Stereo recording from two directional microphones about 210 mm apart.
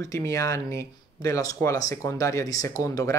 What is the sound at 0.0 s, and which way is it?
A woman's voice, 15° left (ahead or behind).